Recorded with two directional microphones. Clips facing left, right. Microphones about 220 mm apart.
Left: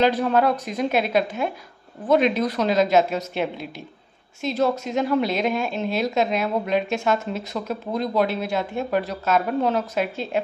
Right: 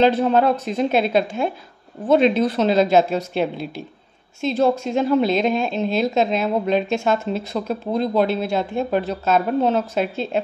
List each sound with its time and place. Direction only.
0.0 s a woman's voice: 25° right (ahead or behind)